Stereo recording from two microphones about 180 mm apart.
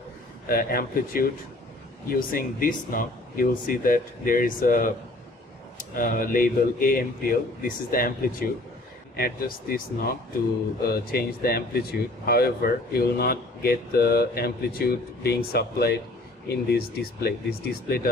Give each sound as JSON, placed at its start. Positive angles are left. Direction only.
{"t": 0.5, "sound": "speech", "side_deg": 55}
{"t": 5.9, "sound": "speech", "side_deg": 50}